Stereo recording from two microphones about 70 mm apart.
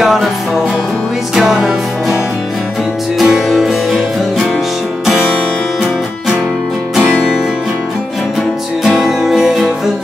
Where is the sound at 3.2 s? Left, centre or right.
Centre.